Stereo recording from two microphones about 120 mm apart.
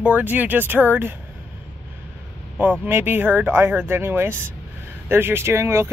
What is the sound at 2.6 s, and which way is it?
Speech, 15° right (ahead or behind).